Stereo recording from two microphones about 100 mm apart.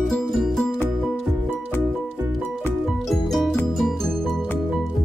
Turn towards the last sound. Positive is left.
turn(degrees=5)  # may be behind; listen again after turning